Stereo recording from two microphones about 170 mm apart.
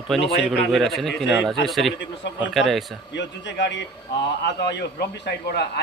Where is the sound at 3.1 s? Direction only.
90° left.